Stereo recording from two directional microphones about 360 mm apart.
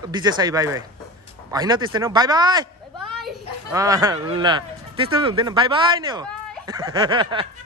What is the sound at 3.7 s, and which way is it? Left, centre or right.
Speech, centre.